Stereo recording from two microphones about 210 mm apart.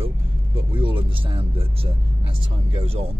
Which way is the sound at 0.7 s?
25° right (ahead or behind).